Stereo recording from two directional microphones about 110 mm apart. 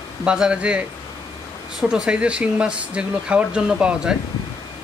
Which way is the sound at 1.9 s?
5° right (ahead or behind).